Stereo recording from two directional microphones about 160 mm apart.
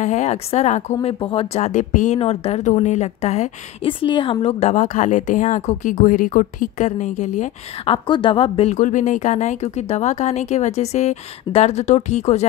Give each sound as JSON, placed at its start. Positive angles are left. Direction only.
{"t": 0.0, "sound": "a woman's voice", "side_deg": 45}
{"t": 1.0, "sound": "a woman's voice", "side_deg": 35}
{"t": 2.1, "sound": "a woman's voice", "side_deg": 40}
{"t": 4.0, "sound": "a woman's voice", "side_deg": 30}
{"t": 7.9, "sound": "a woman's voice", "side_deg": 30}
{"t": 8.7, "sound": "a woman's voice", "side_deg": 50}